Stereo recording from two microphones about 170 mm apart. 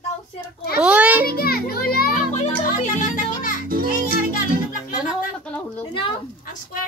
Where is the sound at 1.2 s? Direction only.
65° left (ahead or behind).